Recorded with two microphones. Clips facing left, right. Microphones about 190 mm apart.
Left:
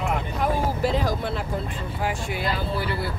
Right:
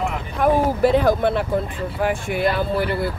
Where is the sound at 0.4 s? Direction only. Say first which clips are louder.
Right 9 dB; 60° right (ahead or behind).